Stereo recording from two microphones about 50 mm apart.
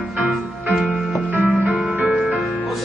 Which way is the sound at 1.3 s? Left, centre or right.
Right.